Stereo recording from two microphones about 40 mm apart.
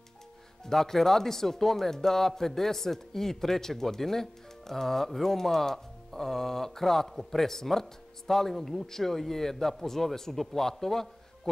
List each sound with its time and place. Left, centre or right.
0.7 s speech: centre